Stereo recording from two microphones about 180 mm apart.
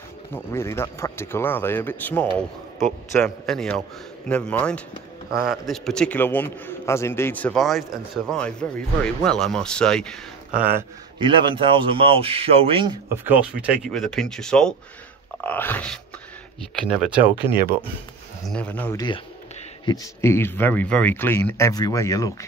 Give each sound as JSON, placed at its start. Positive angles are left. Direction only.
{"t": 0.3, "sound": "a man's voice", "side_deg": 15}
{"t": 3.4, "sound": "a man's voice", "side_deg": 0}
{"t": 5.3, "sound": "a man's voice", "side_deg": -55}
{"t": 5.7, "sound": "a man's voice", "side_deg": 5}
{"t": 10.5, "sound": "speech", "side_deg": -10}
{"t": 11.1, "sound": "speech", "side_deg": -30}
{"t": 13.1, "sound": "a man's voice", "side_deg": -10}
{"t": 16.9, "sound": "speech", "side_deg": -5}
{"t": 18.5, "sound": "a man's voice", "side_deg": 10}
{"t": 18.9, "sound": "a man's voice", "side_deg": 25}